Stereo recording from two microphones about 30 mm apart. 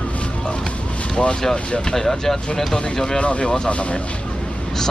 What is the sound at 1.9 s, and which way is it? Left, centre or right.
Speech, centre.